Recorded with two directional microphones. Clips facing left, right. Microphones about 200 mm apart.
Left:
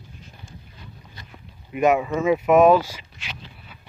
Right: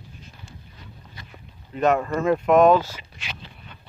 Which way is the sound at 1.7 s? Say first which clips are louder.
Left 2 dB; 10° left (ahead or behind).